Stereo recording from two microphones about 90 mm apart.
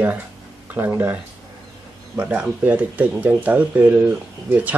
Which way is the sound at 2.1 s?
15° right (ahead or behind).